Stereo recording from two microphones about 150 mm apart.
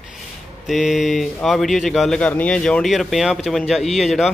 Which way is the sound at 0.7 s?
Centre (ahead or behind).